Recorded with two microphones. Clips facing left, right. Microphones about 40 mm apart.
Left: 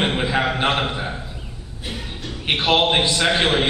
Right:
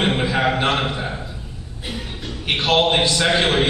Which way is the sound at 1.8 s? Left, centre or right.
Centre.